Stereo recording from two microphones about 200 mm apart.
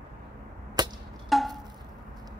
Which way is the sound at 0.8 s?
20° right (ahead or behind).